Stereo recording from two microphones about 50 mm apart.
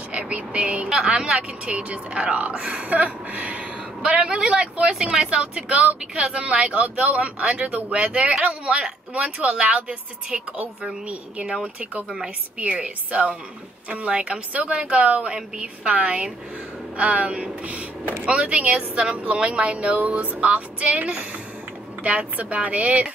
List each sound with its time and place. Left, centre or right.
0.1 s a sound: right
0.8 s a woman's voice: centre
1.7 s speech: right
10.8 s a woman's voice: centre
12.5 s speech: right
13.8 s speech: right